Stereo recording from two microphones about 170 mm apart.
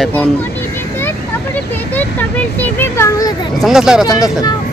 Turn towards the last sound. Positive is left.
turn(degrees=20)  # may be behind; listen again after turning